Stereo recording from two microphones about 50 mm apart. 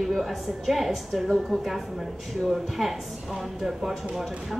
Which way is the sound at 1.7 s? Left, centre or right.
Centre.